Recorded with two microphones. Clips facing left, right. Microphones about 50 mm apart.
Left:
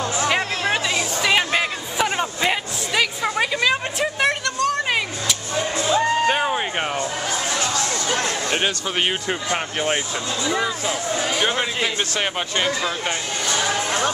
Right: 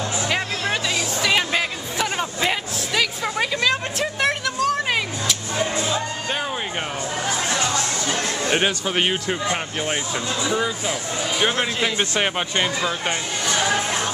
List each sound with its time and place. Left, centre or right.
0.3 s a sound: centre
6.2 s music: centre
8.5 s speech: centre
10.9 s speech: centre